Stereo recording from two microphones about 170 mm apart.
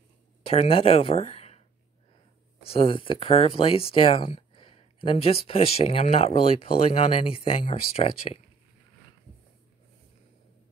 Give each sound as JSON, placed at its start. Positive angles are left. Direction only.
{"t": 0.5, "sound": "speech", "side_deg": 35}
{"t": 2.6, "sound": "speech", "side_deg": 35}